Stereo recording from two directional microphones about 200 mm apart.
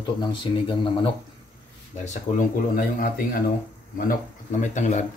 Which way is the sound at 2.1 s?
40° left (ahead or behind).